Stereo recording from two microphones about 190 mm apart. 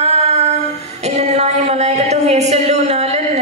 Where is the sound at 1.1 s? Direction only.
35° right (ahead or behind).